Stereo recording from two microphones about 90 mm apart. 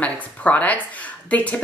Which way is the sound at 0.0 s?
15° left (ahead or behind).